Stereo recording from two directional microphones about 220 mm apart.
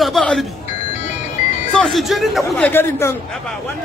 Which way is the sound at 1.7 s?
Centre (ahead or behind).